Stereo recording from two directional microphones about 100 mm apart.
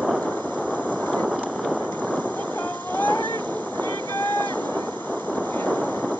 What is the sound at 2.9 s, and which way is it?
Boat, 20° left (ahead or behind).